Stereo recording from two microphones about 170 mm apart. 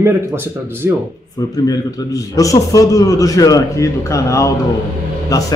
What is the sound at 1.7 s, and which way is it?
A man's voice, 20° left (ahead or behind).